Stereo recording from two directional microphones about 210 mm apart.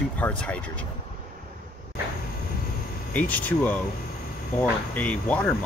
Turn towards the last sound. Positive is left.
turn(degrees=5)  # may be behind; listen again after turning